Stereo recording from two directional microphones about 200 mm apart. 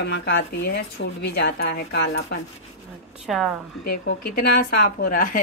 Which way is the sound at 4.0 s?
55° left (ahead or behind).